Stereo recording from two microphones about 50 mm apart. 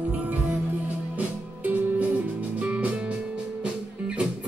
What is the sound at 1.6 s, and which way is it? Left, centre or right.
Music, right.